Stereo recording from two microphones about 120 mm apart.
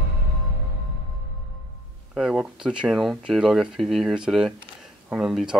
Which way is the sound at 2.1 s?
5° right (ahead or behind).